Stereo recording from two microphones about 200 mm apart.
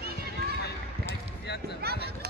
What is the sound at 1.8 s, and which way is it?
Speech, 55° right (ahead or behind).